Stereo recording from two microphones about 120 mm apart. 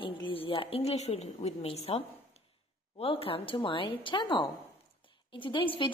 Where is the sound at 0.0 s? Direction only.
45° left (ahead or behind).